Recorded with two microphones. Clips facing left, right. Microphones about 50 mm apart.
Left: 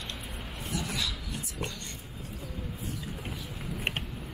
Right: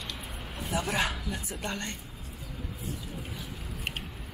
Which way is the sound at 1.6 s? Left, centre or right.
Right.